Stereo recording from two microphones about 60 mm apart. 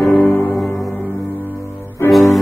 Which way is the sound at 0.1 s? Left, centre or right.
Left.